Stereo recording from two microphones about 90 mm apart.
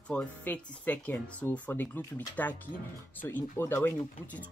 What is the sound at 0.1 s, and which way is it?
Speech, 15° left (ahead or behind).